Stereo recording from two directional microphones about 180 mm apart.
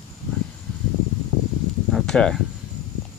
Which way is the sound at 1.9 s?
5° left (ahead or behind).